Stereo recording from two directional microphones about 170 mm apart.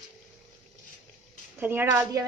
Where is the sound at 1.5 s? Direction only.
10° right (ahead or behind).